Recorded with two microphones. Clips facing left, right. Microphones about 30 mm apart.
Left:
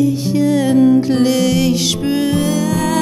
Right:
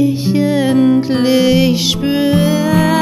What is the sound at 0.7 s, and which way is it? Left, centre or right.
Music, right.